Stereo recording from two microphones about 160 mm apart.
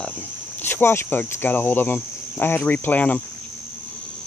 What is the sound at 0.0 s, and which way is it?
Speech, 10° left (ahead or behind).